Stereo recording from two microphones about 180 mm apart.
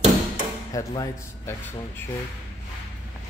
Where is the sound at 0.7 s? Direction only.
20° left (ahead or behind).